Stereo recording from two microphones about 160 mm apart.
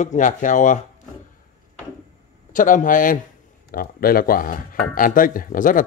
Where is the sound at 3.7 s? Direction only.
70° left (ahead or behind).